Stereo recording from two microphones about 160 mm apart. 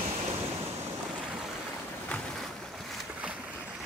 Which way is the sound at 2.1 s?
Centre (ahead or behind).